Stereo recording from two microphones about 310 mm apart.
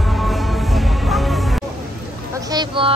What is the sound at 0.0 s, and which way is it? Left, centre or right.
Music, centre.